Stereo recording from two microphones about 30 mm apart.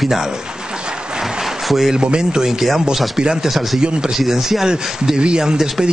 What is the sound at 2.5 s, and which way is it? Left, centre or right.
Speech, centre.